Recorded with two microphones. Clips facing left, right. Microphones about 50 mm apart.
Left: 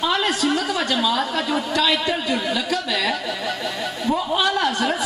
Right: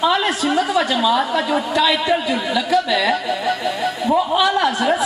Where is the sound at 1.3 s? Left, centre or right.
Centre.